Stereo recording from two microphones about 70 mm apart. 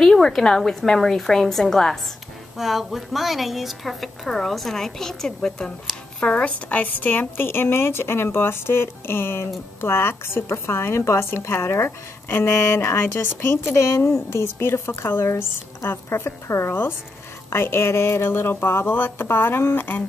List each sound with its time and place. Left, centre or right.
0.0 s a woman's voice: centre; by 20.0 s left